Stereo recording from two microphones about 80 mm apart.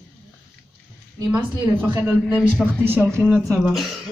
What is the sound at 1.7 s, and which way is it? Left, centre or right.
Speech, right.